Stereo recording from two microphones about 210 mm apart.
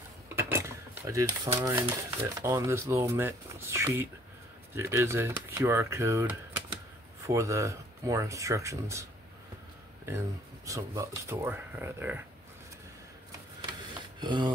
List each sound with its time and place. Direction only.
0.3 s cutlery: 10° right (ahead or behind)
1.6 s speech: 15° right (ahead or behind)
10.0 s speech: 15° right (ahead or behind)
13.7 s a sound: 20° right (ahead or behind)